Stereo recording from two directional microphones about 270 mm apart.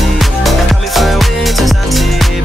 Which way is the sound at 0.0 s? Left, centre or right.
Centre.